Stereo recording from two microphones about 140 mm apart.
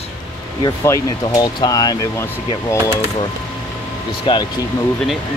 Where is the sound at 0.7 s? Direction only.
25° left (ahead or behind).